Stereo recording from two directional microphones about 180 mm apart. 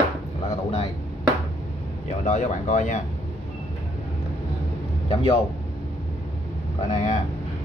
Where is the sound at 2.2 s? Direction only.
45° left (ahead or behind).